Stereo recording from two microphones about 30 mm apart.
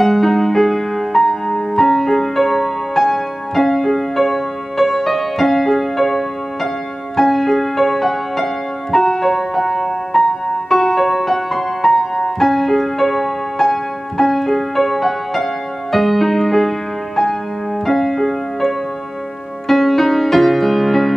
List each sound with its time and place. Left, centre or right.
0.0 s music: centre